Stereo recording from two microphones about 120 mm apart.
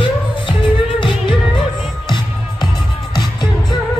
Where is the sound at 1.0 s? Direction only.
40° left (ahead or behind).